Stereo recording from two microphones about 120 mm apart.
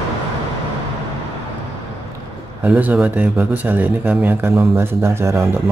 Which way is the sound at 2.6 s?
15° right (ahead or behind).